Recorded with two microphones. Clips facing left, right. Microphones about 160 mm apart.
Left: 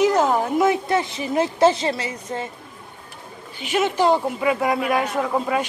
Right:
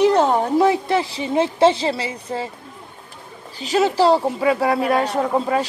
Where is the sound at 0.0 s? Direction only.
30° right (ahead or behind).